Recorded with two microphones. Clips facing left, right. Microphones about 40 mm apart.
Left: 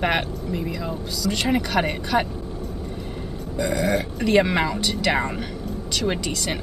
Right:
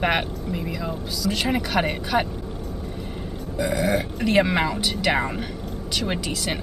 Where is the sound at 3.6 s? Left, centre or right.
Centre.